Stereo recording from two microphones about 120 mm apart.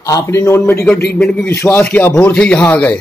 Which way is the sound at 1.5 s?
20° left (ahead or behind).